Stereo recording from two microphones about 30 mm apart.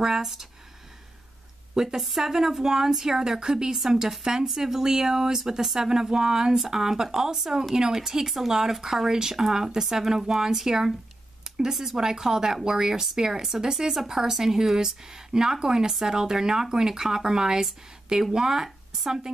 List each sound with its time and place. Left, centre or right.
0.0 s speech: centre
2.0 s speech: centre
3.3 s speech: right
11.7 s speech: centre
12.0 s speech: centre